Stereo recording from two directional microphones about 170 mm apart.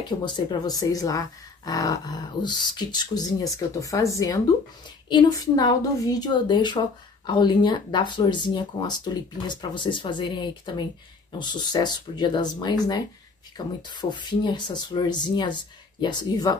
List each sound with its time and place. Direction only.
0.0 s speech: 25° left (ahead or behind)